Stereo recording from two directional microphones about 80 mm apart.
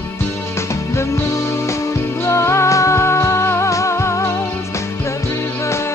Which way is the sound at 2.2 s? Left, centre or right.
Left.